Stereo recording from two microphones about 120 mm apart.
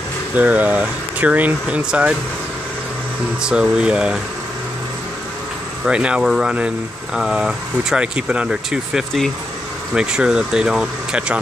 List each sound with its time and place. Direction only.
0.4 s speech: 15° right (ahead or behind)
3.4 s speech: 5° right (ahead or behind)
5.9 s speech: 10° right (ahead or behind)